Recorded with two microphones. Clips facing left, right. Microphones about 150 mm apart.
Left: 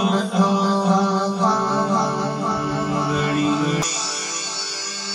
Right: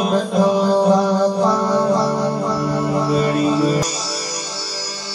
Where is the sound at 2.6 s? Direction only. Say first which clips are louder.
Right 4 dB; 35° right (ahead or behind).